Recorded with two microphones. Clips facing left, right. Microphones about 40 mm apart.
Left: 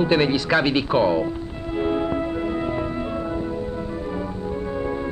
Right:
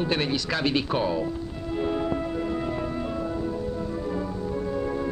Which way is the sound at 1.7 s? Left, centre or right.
Left.